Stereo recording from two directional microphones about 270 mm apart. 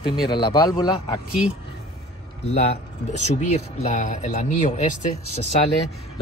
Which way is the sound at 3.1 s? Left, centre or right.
Left.